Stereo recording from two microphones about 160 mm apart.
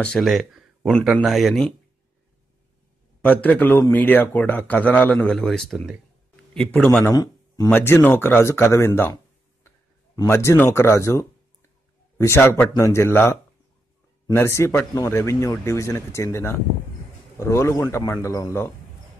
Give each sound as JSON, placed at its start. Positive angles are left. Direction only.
{"t": 0.0, "sound": "speech", "side_deg": 0}
{"t": 3.2, "sound": "a man's voice", "side_deg": 10}
{"t": 6.9, "sound": "a man's voice", "side_deg": 15}
{"t": 10.2, "sound": "a man's voice", "side_deg": 15}